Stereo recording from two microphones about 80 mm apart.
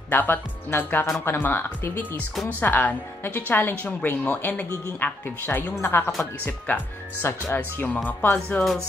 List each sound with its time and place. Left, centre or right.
0.1 s speech: left